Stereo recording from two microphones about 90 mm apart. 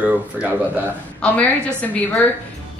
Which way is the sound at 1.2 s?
10° left (ahead or behind).